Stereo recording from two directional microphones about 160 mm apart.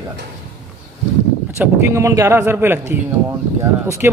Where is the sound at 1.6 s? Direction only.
15° right (ahead or behind).